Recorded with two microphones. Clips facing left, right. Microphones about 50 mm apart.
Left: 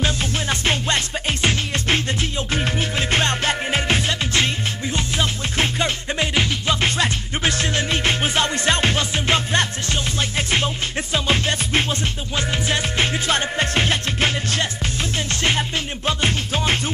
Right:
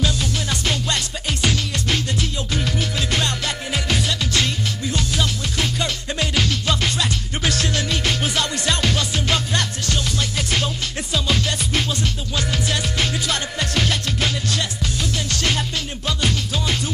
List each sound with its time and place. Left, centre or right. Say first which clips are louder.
0.0 s music: left 1 dB; left
16.1 s music: left 2 dB; left